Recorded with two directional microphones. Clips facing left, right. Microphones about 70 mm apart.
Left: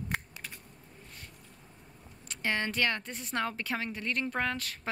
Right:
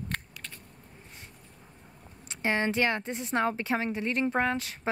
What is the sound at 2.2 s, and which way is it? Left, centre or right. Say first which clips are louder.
A woman's voice: right 4 dB; right.